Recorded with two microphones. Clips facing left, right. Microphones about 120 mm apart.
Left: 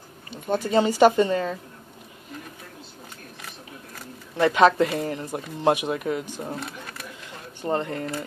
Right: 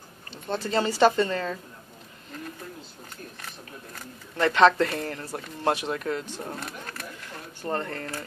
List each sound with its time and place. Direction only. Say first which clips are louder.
0.5 s speech: left 5 dB; 15° left (ahead or behind)
4.4 s speech: left 2 dB; 10° left (ahead or behind)
7.6 s speech: left 4 dB; 20° left (ahead or behind)